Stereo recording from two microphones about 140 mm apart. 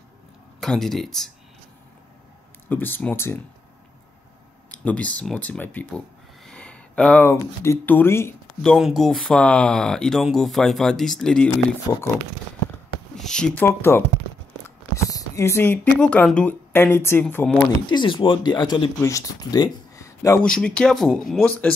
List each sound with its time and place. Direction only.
0.6 s speech: 5° left (ahead or behind)
2.7 s speech: 15° left (ahead or behind)
4.6 s speech: 10° left (ahead or behind)
8.6 s speech: centre (ahead or behind)
13.1 s speech: 5° left (ahead or behind)
13.7 s speech: 15° left (ahead or behind)
17.8 s speech: 35° left (ahead or behind)
20.4 s speech: 5° left (ahead or behind)